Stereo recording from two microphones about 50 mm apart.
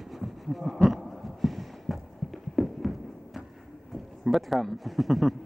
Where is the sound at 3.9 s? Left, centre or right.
Centre.